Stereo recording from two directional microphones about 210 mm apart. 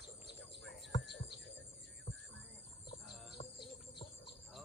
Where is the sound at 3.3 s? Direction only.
20° left (ahead or behind).